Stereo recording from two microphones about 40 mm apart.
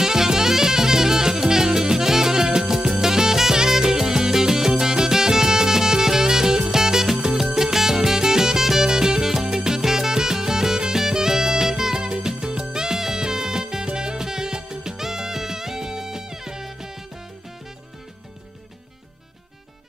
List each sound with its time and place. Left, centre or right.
0.0 s music: centre